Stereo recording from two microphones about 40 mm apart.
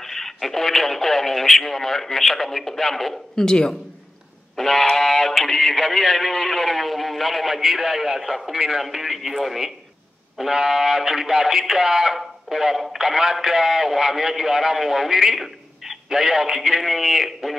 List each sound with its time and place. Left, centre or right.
0.0 s speech: centre
3.4 s a man's voice: centre
4.6 s a man's voice: centre